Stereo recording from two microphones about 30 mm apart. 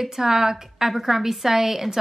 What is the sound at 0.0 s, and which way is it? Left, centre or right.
A woman's voice, centre.